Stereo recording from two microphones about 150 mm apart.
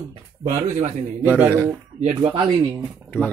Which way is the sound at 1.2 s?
10° right (ahead or behind).